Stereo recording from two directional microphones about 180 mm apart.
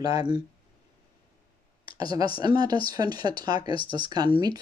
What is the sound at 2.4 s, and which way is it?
Speech, 25° right (ahead or behind).